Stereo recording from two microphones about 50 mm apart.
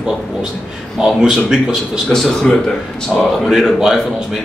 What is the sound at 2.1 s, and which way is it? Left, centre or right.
Speech, centre.